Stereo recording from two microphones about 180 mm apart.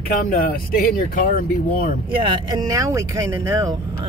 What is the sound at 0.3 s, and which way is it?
Speech, 55° left (ahead or behind).